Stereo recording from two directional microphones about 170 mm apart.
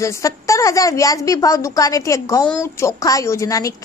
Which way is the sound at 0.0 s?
20° left (ahead or behind).